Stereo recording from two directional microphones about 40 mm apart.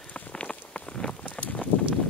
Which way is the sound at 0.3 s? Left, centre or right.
Left.